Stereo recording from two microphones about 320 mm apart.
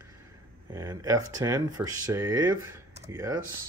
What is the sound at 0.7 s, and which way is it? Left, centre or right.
Speech, centre.